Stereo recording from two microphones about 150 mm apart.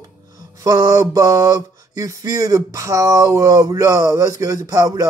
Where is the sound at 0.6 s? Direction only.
25° right (ahead or behind).